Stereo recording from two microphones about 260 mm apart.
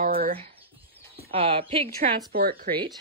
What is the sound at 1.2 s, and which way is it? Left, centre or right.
A woman's voice, right.